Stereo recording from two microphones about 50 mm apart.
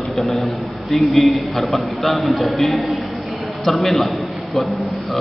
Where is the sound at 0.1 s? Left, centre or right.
Centre.